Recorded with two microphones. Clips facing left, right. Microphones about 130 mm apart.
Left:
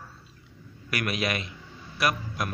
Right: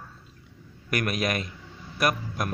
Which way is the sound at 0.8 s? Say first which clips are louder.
Right 2 dB; 45° right (ahead or behind).